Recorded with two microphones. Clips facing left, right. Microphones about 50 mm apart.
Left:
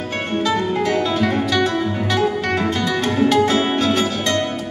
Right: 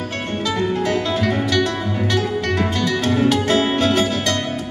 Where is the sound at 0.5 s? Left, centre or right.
Centre.